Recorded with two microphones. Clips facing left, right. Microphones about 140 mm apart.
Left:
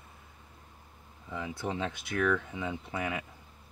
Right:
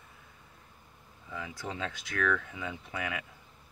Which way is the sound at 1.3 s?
25° left (ahead or behind).